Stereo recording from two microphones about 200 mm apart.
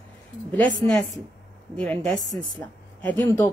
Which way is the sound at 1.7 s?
5° left (ahead or behind).